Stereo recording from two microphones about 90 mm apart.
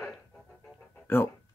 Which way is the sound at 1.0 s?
25° left (ahead or behind).